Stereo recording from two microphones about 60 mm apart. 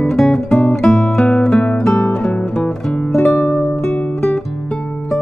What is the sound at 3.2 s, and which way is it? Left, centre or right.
Music, left.